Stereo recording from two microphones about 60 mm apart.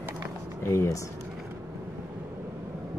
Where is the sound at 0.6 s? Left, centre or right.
Left.